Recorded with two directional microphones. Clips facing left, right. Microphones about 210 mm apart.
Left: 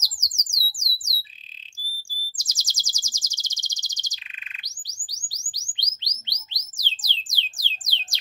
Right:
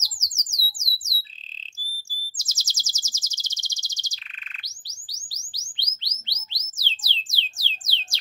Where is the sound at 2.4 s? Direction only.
15° left (ahead or behind).